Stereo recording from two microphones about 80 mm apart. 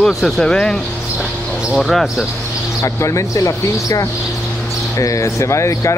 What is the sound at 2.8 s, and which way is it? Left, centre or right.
Speech, left.